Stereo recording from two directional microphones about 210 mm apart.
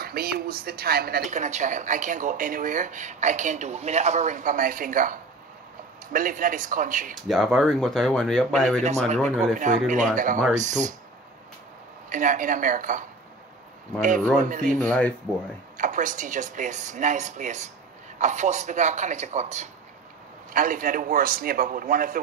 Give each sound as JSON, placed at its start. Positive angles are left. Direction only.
{"t": 0.0, "sound": "speech", "side_deg": -45}
{"t": 1.4, "sound": "speech", "side_deg": -35}
{"t": 6.1, "sound": "speech", "side_deg": -40}
{"t": 7.2, "sound": "speech", "side_deg": 0}
{"t": 9.6, "sound": "speech", "side_deg": -35}
{"t": 12.1, "sound": "speech", "side_deg": -40}
{"t": 14.0, "sound": "speech", "side_deg": -40}
{"t": 14.8, "sound": "speech", "side_deg": 5}
{"t": 15.8, "sound": "speech", "side_deg": -40}